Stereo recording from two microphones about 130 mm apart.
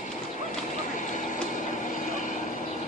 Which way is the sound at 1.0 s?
75° left (ahead or behind).